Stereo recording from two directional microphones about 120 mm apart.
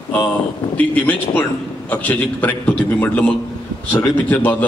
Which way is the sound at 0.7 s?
15° left (ahead or behind).